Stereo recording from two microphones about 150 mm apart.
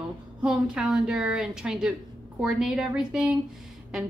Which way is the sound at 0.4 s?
5° right (ahead or behind).